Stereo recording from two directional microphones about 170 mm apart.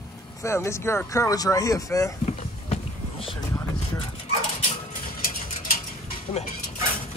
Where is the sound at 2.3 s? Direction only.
40° left (ahead or behind).